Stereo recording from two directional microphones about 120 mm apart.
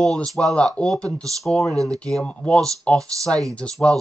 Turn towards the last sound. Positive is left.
turn(degrees=5)  # may be behind; listen again after turning